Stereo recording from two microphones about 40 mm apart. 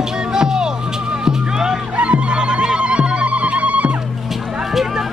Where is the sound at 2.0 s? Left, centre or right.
Right.